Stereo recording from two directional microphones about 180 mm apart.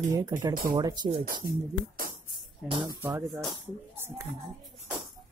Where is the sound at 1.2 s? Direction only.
55° right (ahead or behind).